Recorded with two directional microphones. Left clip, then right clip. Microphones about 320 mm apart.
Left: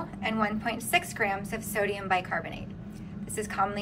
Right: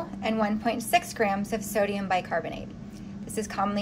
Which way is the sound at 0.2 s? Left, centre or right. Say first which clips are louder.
Right 2 dB; centre.